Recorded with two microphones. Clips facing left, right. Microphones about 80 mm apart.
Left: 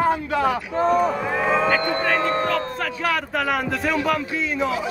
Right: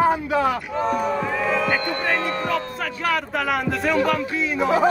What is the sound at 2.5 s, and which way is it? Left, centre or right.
Speech, centre.